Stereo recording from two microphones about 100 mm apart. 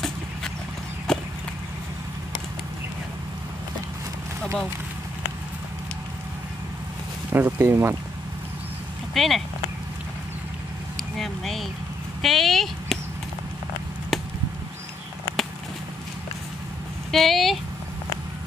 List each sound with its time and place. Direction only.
1.1 s a sound: 5° left (ahead or behind)
7.3 s speech: 20° right (ahead or behind)
9.1 s speech: centre (ahead or behind)
11.0 s speech: centre (ahead or behind)
14.1 s chop: centre (ahead or behind)
17.1 s speech: centre (ahead or behind)